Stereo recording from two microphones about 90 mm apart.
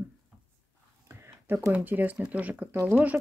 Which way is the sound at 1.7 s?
20° right (ahead or behind).